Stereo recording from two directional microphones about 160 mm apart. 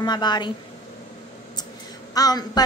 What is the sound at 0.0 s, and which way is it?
Speech, 25° left (ahead or behind).